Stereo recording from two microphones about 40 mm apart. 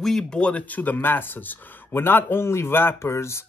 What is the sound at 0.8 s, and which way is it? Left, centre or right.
Speech, left.